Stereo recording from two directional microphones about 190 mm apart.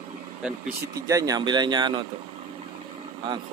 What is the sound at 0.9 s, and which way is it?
Speech, 20° right (ahead or behind).